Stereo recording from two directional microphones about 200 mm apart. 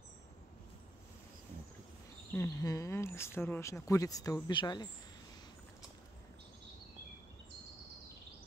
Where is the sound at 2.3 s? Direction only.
15° left (ahead or behind).